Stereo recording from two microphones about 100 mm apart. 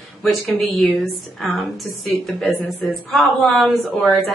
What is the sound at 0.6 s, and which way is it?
Speech, centre (ahead or behind).